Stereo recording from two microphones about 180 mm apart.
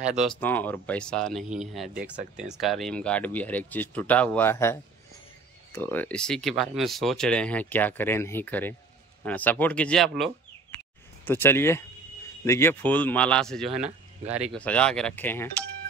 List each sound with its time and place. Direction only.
0.0 s speech: 5° right (ahead or behind)
0.4 s speech: 10° left (ahead or behind)
11.2 s speech: 10° left (ahead or behind); by 14.6 s 5° right (ahead or behind)
14.6 s speech: 5° left (ahead or behind)